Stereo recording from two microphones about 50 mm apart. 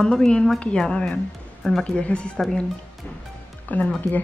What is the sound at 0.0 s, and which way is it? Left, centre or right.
A woman's voice, centre.